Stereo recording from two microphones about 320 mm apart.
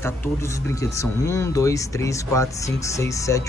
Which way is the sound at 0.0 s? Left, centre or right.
Centre.